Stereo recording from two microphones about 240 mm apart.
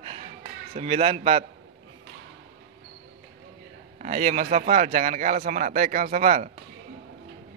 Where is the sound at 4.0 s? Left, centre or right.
Right.